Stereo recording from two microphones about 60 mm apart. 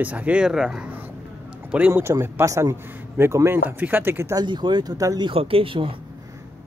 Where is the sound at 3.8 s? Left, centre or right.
Right.